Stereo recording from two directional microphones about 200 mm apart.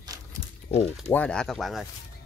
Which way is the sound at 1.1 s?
5° left (ahead or behind).